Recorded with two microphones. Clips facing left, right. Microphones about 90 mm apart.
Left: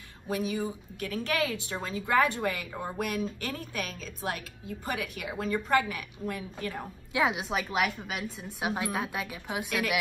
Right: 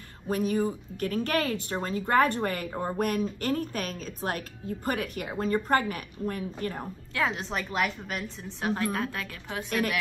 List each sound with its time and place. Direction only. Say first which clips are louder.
0.3 s a woman's voice: right 4 dB; 45° right (ahead or behind)
7.2 s a woman's voice: left 2 dB; 10° left (ahead or behind)